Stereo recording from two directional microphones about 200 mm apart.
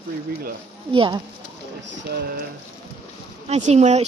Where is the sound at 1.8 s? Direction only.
60° right (ahead or behind).